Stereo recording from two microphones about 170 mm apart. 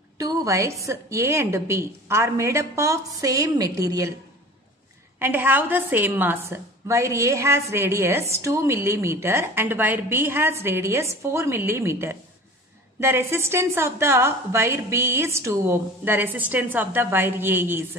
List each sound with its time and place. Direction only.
0.2 s a woman's voice: 20° right (ahead or behind)
5.2 s a woman's voice: 10° right (ahead or behind)